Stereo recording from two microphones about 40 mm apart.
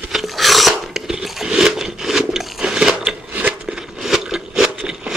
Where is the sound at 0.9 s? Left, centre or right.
Centre.